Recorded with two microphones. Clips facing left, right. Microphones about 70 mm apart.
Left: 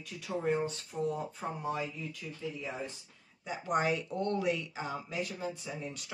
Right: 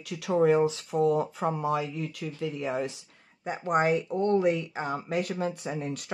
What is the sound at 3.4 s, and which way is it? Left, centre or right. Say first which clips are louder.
Speech: right 6 dB; right.